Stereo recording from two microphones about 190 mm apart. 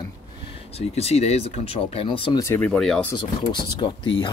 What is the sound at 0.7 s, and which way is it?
Speech, 35° left (ahead or behind).